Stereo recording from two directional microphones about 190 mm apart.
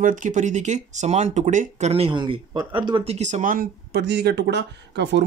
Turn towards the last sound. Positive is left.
turn(degrees=-65)  # may be behind; listen again after turning